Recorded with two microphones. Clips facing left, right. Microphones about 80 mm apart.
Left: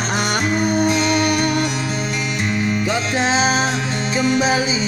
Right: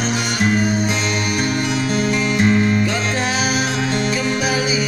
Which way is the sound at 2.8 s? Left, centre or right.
Left.